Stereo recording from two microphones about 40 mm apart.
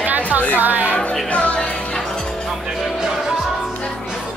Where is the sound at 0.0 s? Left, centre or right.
Right.